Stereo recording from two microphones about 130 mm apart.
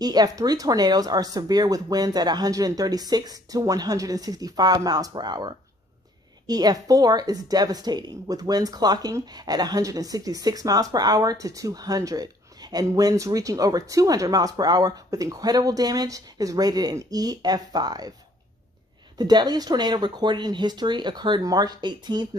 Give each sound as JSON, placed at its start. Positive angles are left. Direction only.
{"t": 0.0, "sound": "speech", "side_deg": -30}
{"t": 19.1, "sound": "speech", "side_deg": -30}